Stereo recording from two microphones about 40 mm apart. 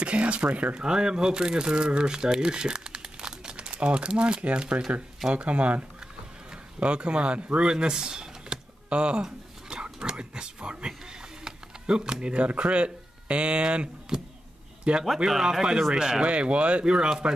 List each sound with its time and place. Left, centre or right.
0.0 s speech: right
0.8 s speech: centre
9.2 s a sound: centre
9.8 s speech: centre
10.9 s a sound: centre
12.4 s speech: right
15.2 s speech: centre
16.3 s speech: right